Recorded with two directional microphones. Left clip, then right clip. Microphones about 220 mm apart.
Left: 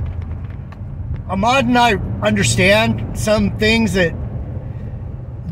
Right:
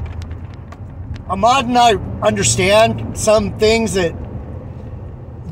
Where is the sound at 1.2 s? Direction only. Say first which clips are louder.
Right 2 dB; 30° left (ahead or behind).